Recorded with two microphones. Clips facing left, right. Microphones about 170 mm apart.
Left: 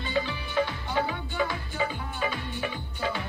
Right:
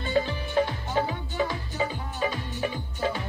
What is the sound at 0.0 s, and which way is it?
Music, 45° right (ahead or behind).